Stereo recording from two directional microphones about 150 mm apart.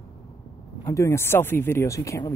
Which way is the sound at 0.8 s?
20° left (ahead or behind).